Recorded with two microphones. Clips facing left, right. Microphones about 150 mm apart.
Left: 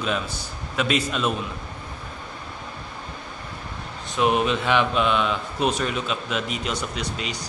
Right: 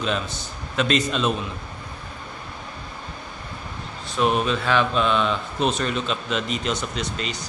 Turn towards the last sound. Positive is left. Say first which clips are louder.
# right 1 dB
turn(degrees=10)  # may be behind; listen again after turning